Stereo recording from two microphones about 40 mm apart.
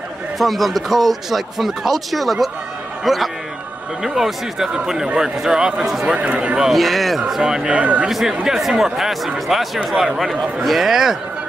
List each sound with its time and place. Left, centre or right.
0.4 s a man's voice: centre
6.1 s speech: right
6.7 s speech: centre
7.4 s speech: centre
7.7 s speech: right
8.1 s speech: centre